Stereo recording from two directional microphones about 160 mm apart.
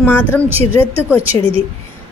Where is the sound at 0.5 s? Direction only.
35° right (ahead or behind).